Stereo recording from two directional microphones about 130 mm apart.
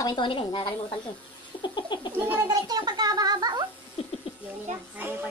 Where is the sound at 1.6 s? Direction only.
35° left (ahead or behind).